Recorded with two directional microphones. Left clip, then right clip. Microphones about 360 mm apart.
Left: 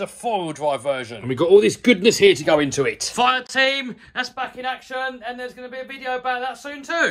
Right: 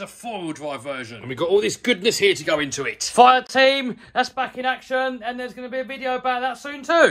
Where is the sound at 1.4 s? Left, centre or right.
Left.